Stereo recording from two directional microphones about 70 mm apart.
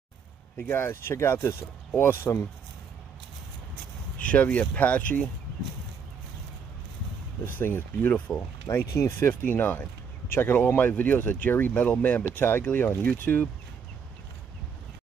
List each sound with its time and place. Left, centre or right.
0.7 s speech: left
4.2 s speech: left
7.4 s speech: left
8.6 s speech: left
9.3 s speech: left